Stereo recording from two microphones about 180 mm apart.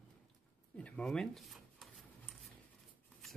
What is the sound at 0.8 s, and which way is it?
Speech, 5° left (ahead or behind).